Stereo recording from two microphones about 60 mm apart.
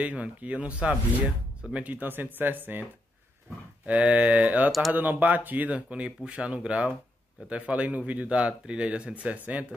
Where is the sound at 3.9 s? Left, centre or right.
Right.